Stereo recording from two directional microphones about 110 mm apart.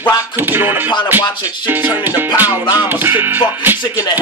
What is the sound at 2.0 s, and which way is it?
Music, 15° right (ahead or behind).